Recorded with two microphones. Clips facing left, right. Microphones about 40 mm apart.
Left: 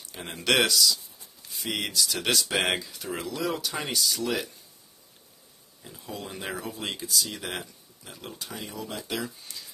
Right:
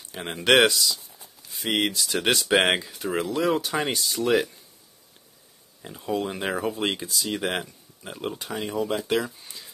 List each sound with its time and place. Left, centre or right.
0.2 s speech: right
5.8 s speech: right
9.2 s speech: right